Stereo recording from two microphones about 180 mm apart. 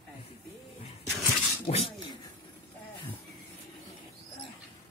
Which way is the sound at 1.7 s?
35° left (ahead or behind).